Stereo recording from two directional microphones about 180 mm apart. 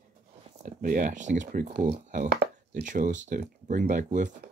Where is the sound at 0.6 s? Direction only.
45° right (ahead or behind).